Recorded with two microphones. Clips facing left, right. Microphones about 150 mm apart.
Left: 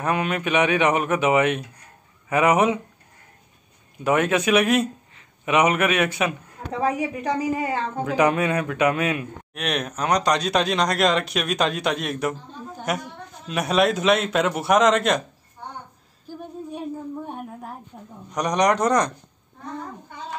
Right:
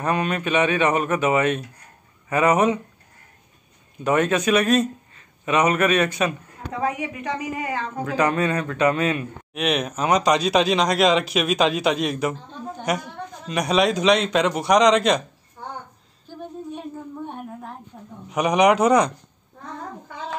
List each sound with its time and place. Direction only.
0.0 s a man's voice: 10° left (ahead or behind)
4.0 s a man's voice: 10° left (ahead or behind)
6.8 s a woman's voice: 35° left (ahead or behind)
8.0 s a man's voice: 15° left (ahead or behind)
9.5 s speech: centre (ahead or behind)
16.3 s a sound: 10° left (ahead or behind)
18.3 s speech: 5° right (ahead or behind)